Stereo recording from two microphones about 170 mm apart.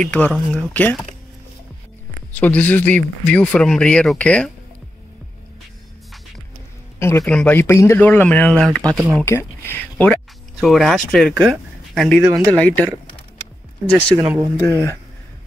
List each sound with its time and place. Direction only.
0.0 s speech: 10° left (ahead or behind)
2.4 s speech: 10° left (ahead or behind)
7.0 s speech: 15° left (ahead or behind)
9.2 s speech: 15° left (ahead or behind)
13.8 s speech: 10° left (ahead or behind)